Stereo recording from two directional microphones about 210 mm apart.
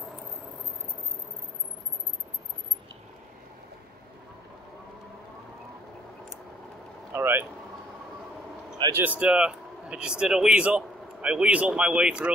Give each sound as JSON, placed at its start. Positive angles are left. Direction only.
{"t": 7.1, "sound": "speech", "side_deg": -10}
{"t": 8.7, "sound": "a sound", "side_deg": -20}
{"t": 9.0, "sound": "speech", "side_deg": -5}